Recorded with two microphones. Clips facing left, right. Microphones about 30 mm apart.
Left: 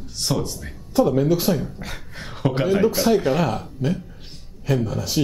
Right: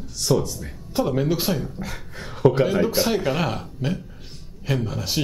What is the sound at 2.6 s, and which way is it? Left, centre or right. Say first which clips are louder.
Speech: left 1 dB; centre.